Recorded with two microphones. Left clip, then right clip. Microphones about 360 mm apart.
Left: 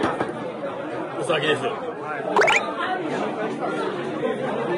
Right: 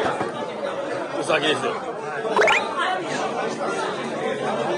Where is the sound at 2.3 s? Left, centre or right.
Centre.